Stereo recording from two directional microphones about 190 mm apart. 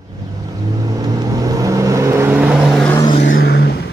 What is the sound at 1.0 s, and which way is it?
Vehicle, 20° right (ahead or behind).